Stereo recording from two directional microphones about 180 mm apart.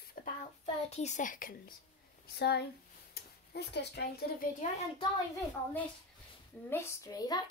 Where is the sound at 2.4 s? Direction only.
65° left (ahead or behind).